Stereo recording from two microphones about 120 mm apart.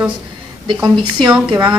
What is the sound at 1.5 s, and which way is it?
Speech, 35° right (ahead or behind).